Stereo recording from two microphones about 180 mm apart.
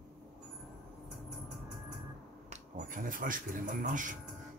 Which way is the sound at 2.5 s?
45° right (ahead or behind).